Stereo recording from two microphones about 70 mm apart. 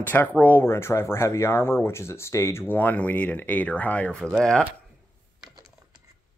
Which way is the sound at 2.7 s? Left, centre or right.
Left.